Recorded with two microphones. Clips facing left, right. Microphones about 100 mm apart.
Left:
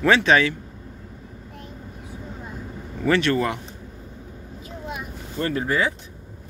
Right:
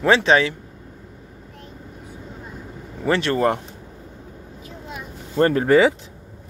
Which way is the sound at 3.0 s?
30° right (ahead or behind).